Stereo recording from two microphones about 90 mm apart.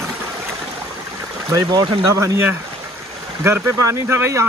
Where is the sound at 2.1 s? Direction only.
35° right (ahead or behind).